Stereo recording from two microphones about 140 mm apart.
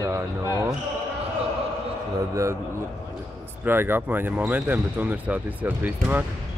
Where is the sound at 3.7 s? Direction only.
15° right (ahead or behind).